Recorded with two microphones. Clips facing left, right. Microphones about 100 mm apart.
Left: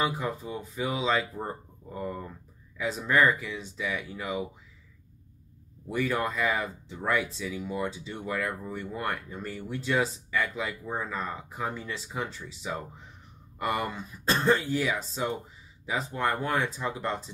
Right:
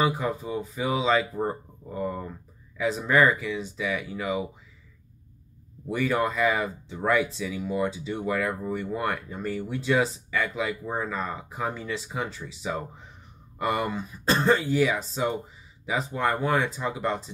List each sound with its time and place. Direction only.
0.0 s speech: 5° right (ahead or behind)
1.3 s speech: 15° right (ahead or behind)
1.9 s speech: 5° right (ahead or behind)
5.9 s speech: 5° right (ahead or behind)
14.7 s speech: centre (ahead or behind)